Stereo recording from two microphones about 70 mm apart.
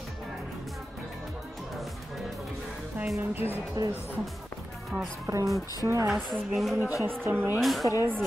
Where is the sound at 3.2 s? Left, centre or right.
Right.